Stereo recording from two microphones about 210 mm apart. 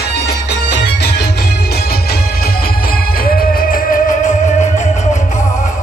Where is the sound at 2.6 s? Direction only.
45° left (ahead or behind).